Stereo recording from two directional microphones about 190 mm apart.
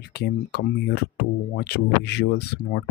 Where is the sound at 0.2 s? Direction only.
60° left (ahead or behind).